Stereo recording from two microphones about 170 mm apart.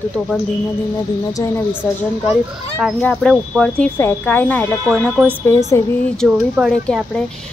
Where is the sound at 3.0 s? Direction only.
5° left (ahead or behind).